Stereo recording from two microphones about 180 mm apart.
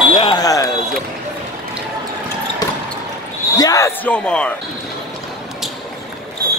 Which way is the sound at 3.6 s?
20° left (ahead or behind).